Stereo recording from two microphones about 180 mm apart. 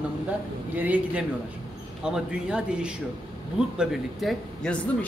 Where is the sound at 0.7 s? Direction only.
10° right (ahead or behind).